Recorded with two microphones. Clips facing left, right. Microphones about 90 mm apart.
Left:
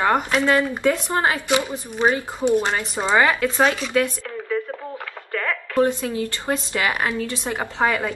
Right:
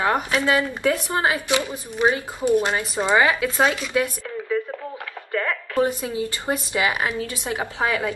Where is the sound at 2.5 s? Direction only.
25° left (ahead or behind).